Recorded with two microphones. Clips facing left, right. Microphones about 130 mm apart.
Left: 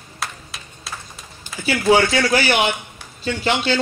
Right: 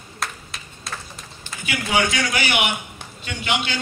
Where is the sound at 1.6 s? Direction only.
35° left (ahead or behind).